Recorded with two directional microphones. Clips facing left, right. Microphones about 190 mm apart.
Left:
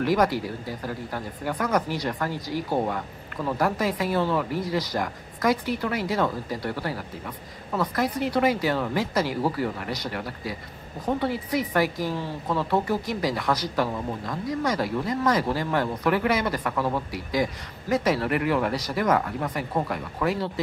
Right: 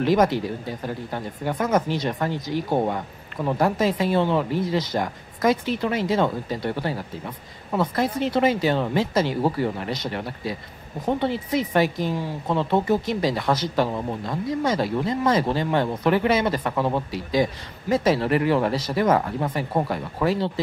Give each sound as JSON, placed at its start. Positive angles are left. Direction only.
{"t": 0.0, "sound": "speech", "side_deg": -25}